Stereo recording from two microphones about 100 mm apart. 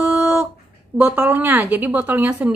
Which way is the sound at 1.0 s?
15° right (ahead or behind).